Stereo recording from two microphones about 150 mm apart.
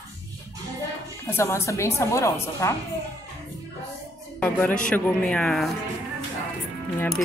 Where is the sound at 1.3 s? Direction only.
20° left (ahead or behind).